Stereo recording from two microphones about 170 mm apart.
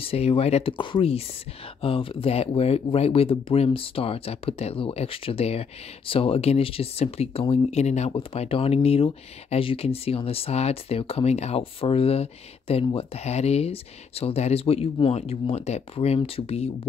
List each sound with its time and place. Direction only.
0.0 s speech: 35° left (ahead or behind)